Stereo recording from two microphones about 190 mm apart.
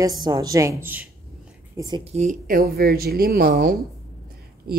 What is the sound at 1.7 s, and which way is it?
A woman's voice, 25° right (ahead or behind).